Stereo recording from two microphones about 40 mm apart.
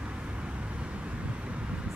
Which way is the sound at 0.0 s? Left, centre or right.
Right.